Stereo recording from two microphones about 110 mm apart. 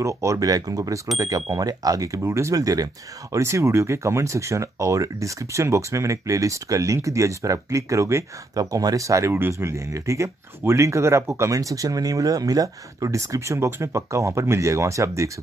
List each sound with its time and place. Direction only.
0.0 s speech: 30° right (ahead or behind)